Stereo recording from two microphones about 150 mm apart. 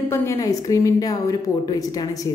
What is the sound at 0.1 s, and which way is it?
A woman's voice, 20° left (ahead or behind).